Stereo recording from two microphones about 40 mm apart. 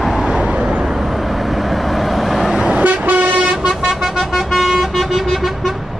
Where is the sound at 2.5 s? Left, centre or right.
Centre.